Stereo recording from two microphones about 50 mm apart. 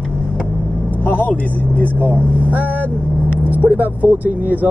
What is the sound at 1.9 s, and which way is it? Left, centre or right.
Speech, right.